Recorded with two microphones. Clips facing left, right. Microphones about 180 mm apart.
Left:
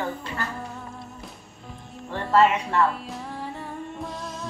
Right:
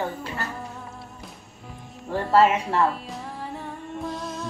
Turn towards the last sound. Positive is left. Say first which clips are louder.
# right 3 dB
turn(degrees=0)  # may be behind; listen again after turning